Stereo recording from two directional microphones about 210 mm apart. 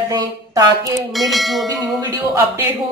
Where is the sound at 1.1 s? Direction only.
Centre (ahead or behind).